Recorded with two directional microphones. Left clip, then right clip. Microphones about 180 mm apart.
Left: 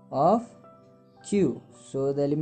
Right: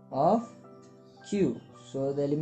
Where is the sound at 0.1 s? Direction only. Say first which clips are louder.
Left 3 dB; 40° left (ahead or behind).